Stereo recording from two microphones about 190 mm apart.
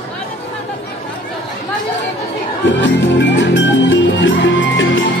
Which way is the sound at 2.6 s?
75° left (ahead or behind).